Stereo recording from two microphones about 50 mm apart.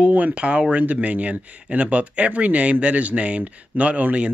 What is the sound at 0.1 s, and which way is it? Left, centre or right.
Speech, right.